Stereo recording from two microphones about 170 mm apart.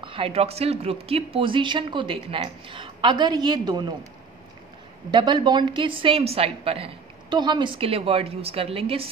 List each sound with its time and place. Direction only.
0.0 s speech: 30° right (ahead or behind)
5.1 s a woman's voice: 25° right (ahead or behind)